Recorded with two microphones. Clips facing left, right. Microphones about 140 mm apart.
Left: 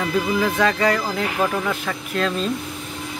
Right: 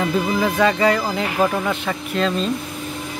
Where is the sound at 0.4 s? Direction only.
5° right (ahead or behind).